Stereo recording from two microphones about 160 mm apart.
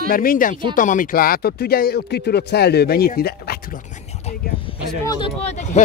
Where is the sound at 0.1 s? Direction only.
60° left (ahead or behind).